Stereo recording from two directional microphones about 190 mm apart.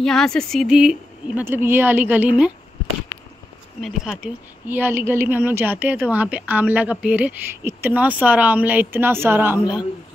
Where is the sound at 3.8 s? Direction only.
5° right (ahead or behind).